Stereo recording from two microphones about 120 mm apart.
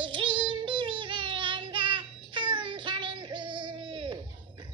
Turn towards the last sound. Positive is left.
turn(degrees=-45)  # may be behind; listen again after turning